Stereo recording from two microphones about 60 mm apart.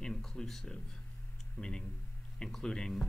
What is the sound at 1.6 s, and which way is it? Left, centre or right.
Speech, left.